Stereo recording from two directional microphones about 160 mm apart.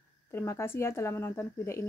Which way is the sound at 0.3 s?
15° left (ahead or behind).